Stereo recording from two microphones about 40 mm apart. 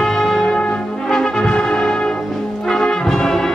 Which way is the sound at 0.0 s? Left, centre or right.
Centre.